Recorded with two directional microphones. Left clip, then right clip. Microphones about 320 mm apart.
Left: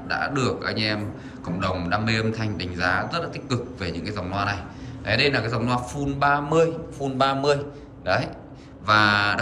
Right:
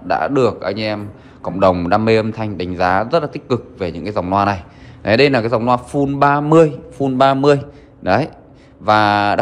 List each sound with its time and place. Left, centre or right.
0.1 s a man's voice: centre